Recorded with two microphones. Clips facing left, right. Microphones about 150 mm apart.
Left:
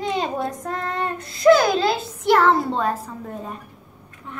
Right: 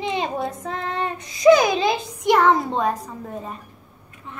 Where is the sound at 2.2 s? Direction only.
5° left (ahead or behind).